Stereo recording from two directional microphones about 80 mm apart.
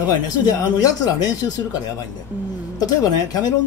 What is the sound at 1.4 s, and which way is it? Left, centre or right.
Speech, left.